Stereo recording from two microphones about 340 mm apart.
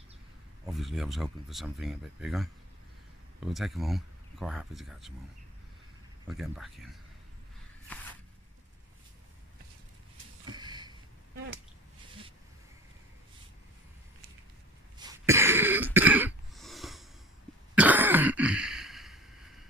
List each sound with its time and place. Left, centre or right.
0.7 s speech: centre
6.2 s speech: centre
7.9 s a sound: centre
10.4 s a sound: centre
15.0 s cough: centre
17.7 s throat clearing: centre